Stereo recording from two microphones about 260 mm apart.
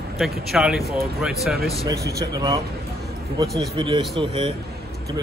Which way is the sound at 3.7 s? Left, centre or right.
Centre.